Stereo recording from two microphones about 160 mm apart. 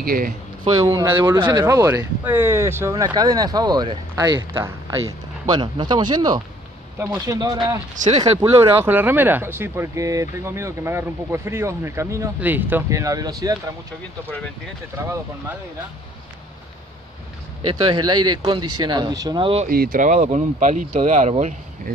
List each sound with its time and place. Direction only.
0.0 s speech: 65° right (ahead or behind)
0.7 s speech: 20° right (ahead or behind)
7.0 s speech: 15° right (ahead or behind)
7.9 s speech: 50° right (ahead or behind)
8.5 s speech: 15° right (ahead or behind)
15.0 s speech: 15° right (ahead or behind)
17.6 s speech: 30° right (ahead or behind)
19.7 s speech: 65° right (ahead or behind); by 21.5 s 45° right (ahead or behind)